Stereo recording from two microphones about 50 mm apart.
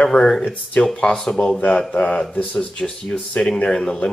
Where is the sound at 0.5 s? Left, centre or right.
Left.